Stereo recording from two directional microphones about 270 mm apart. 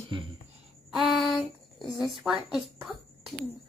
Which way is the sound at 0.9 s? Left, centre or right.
Centre.